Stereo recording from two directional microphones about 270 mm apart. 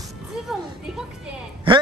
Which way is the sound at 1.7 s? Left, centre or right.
Centre.